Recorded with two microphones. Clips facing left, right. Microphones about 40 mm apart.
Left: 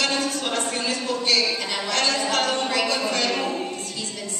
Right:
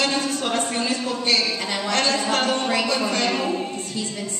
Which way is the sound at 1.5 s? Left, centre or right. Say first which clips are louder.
Right 1 dB; centre.